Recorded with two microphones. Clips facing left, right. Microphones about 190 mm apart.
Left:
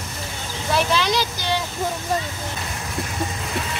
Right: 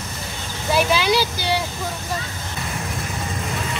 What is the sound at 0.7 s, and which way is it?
Speech, 10° right (ahead or behind).